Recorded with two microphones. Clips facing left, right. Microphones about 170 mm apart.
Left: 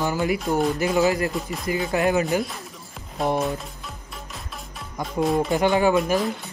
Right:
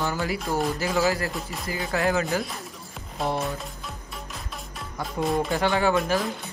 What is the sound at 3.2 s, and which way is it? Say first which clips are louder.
Speech: left 4 dB; centre (ahead or behind).